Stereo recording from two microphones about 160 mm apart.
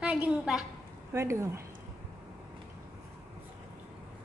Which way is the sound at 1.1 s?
15° right (ahead or behind).